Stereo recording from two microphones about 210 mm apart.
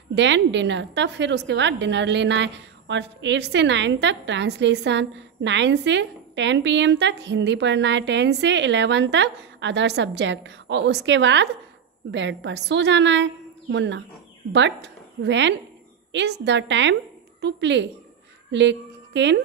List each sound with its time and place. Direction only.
0.1 s a woman's voice: 60° right (ahead or behind)